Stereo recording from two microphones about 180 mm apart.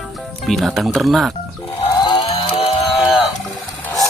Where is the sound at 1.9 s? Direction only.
30° left (ahead or behind).